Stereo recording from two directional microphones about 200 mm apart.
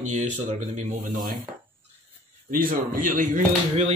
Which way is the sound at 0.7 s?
40° right (ahead or behind).